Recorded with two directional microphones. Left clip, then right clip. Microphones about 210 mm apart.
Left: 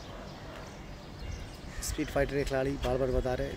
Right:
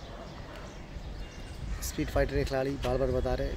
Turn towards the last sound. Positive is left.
turn(degrees=0)  # may be behind; listen again after turning